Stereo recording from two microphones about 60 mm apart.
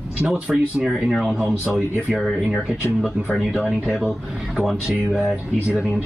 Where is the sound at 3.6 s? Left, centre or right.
Centre.